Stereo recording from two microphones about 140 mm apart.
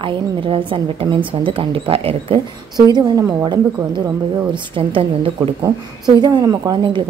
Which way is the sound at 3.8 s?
20° right (ahead or behind).